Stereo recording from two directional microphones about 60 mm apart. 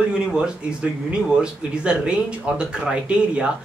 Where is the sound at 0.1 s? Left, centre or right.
Centre.